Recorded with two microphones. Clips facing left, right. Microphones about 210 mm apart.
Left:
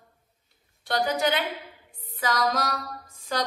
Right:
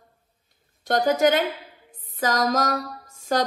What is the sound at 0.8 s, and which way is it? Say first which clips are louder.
Mantra: right 6 dB; 45° right (ahead or behind).